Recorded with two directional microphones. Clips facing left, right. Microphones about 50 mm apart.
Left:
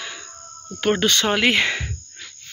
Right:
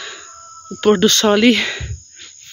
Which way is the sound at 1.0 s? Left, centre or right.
Centre.